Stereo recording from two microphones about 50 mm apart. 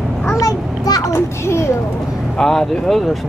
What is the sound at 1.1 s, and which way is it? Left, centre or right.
Speech, left.